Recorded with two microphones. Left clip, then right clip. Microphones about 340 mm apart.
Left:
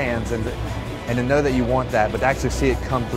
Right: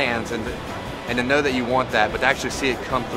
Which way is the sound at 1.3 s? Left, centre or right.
Left.